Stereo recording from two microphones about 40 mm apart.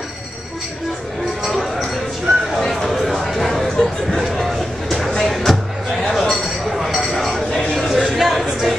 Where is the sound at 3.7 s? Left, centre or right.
Centre.